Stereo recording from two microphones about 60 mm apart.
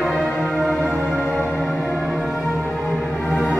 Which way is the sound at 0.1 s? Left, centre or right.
Centre.